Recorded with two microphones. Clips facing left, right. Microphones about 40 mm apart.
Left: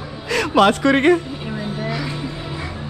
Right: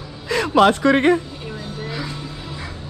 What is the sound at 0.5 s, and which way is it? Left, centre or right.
Speech, left.